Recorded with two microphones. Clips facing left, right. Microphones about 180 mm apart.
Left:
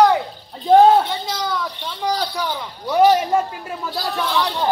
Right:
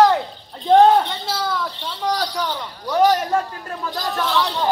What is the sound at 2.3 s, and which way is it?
Speech, 10° left (ahead or behind).